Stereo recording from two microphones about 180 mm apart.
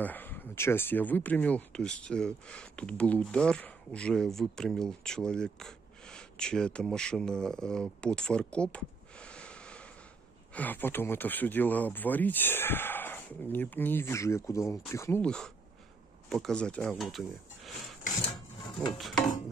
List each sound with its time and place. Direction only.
0.0 s speech: 10° left (ahead or behind)
18.6 s dishes: 25° left (ahead or behind)